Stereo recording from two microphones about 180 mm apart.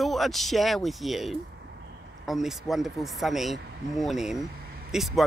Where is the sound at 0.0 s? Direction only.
Centre (ahead or behind).